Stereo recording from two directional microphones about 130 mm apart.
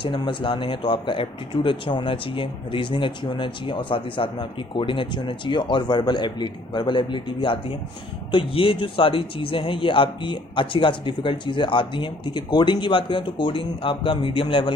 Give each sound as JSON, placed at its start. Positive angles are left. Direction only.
{"t": 0.0, "sound": "a man's voice", "side_deg": 35}